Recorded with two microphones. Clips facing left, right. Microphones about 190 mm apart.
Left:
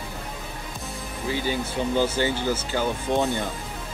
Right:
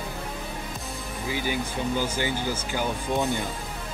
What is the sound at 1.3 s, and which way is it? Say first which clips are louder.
Speech: left 2 dB; 15° right (ahead or behind).